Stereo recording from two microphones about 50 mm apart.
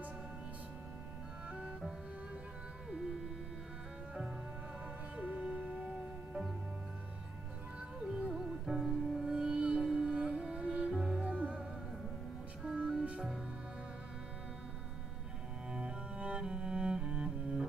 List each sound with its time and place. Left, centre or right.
1.5 s music: centre
5.1 s music: right
8.2 s music: right
8.6 s music: centre
11.2 s music: right
12.6 s music: centre
15.7 s cello: right